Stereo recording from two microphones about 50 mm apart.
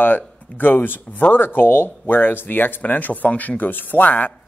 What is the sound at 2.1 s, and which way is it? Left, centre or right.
Speech, left.